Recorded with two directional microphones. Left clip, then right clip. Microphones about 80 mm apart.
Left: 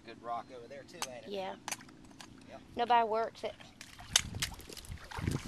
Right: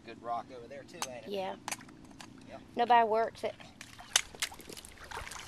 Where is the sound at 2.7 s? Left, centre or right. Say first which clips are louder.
Right 3 dB; right.